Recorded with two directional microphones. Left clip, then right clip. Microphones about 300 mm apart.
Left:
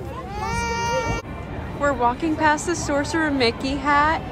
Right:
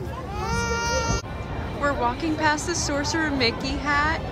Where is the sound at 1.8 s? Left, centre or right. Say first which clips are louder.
Left 4 dB; centre.